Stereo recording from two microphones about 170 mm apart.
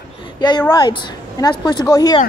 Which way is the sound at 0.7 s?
25° left (ahead or behind).